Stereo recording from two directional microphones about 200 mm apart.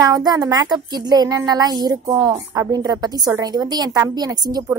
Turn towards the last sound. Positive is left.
turn(degrees=-20)  # may be behind; listen again after turning